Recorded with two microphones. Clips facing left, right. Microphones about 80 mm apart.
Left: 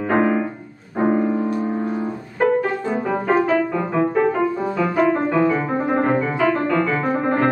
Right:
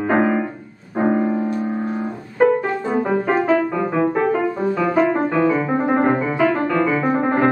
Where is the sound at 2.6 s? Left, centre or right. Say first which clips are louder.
Right 2 dB; centre.